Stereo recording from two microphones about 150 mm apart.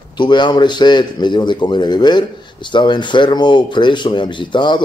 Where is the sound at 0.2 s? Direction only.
30° left (ahead or behind).